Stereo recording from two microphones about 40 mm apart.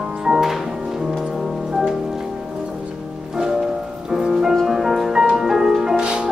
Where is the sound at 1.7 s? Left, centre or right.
Centre.